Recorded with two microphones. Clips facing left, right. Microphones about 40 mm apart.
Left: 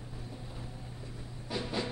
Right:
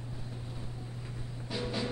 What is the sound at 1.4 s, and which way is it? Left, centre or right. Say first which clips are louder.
Music: left 1 dB; centre.